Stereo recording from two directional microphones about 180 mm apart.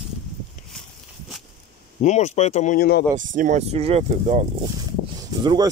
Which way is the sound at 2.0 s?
40° left (ahead or behind).